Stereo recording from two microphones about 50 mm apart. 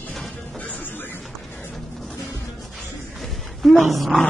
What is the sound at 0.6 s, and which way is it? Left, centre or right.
Music, left.